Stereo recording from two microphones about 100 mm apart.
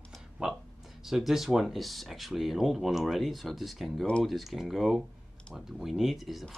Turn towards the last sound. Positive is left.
turn(degrees=0)  # may be behind; listen again after turning